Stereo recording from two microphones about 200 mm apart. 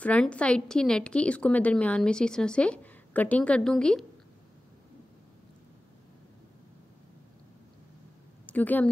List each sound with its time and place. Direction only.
0.0 s a woman's voice: 5° left (ahead or behind)
8.5 s a woman's voice: 10° left (ahead or behind)